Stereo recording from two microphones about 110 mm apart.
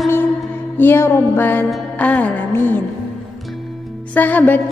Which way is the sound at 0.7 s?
20° left (ahead or behind).